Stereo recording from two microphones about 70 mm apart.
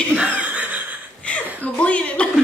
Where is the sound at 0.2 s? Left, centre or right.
Right.